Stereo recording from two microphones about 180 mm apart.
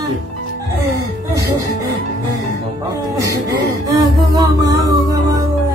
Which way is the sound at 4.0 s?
20° right (ahead or behind).